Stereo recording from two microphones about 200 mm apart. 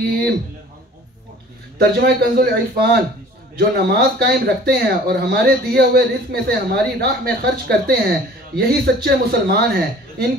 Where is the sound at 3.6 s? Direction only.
50° right (ahead or behind).